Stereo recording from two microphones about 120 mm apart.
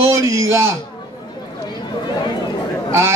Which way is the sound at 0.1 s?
25° right (ahead or behind).